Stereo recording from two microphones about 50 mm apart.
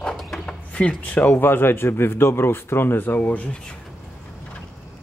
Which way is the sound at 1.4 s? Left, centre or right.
Left.